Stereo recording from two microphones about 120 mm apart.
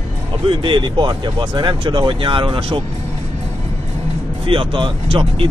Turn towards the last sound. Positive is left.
turn(degrees=-45)  # may be behind; listen again after turning